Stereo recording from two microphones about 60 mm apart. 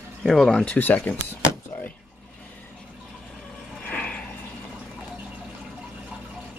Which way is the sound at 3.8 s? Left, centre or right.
Centre.